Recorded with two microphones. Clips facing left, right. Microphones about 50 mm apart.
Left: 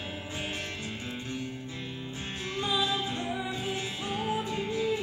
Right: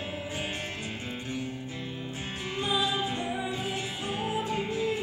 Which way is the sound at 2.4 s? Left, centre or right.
Right.